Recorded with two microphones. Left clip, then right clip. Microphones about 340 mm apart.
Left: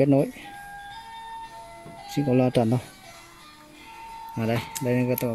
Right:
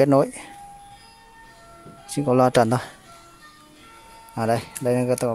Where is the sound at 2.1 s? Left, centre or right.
Right.